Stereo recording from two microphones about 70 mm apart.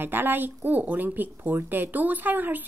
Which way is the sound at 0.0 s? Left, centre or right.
Right.